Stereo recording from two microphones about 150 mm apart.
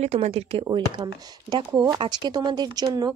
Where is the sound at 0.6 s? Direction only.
30° right (ahead or behind).